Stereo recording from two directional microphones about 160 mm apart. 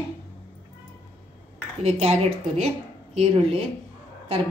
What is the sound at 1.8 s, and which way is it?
Speech, 40° right (ahead or behind).